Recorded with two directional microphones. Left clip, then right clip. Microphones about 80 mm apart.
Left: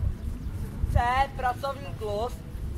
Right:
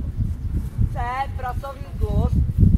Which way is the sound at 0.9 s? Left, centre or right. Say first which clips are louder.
Left 2 dB; left.